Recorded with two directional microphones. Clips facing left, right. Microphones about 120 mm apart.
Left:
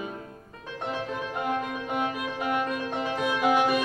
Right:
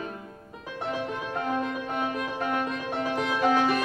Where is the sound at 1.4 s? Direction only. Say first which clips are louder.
Right 1 dB; 10° left (ahead or behind).